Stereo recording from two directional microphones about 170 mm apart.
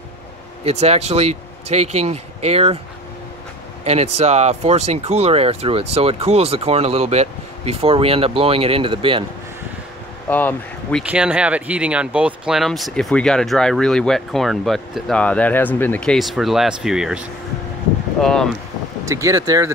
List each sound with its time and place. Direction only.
0.7 s speech: 35° right (ahead or behind)
3.8 s speech: 40° right (ahead or behind)
10.2 s speech: 10° left (ahead or behind)
11.0 s speech: 5° right (ahead or behind)
18.2 s speech: 5° left (ahead or behind)
19.0 s speech: 20° right (ahead or behind)